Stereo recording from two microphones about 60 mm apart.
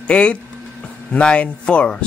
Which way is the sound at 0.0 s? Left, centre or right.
Centre.